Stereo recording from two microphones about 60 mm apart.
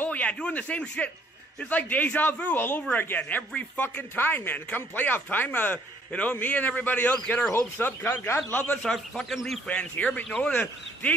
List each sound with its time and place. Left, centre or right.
0.0 s speech: left
7.5 s speech: left
8.8 s a man's voice: centre
9.2 s speech: centre
9.7 s speech: left